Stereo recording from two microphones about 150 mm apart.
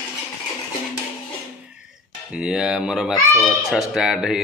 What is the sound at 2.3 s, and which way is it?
A child's voice, 5° right (ahead or behind).